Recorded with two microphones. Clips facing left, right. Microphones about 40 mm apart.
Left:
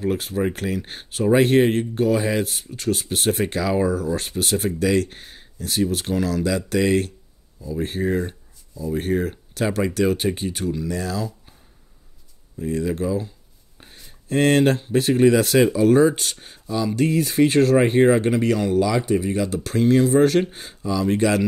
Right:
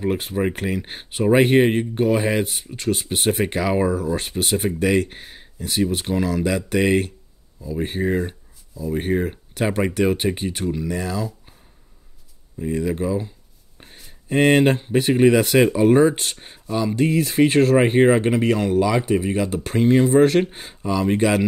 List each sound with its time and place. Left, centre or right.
0.0 s speech: right; by 8.9 s centre
8.9 s speech: centre
12.5 s speech: centre
13.7 s a sound: centre
14.3 s speech: centre
17.0 s speech: centre
20.8 s speech: right
21.1 s speech: centre